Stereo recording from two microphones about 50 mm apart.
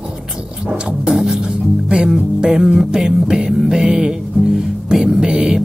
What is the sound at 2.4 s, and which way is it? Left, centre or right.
Music, centre.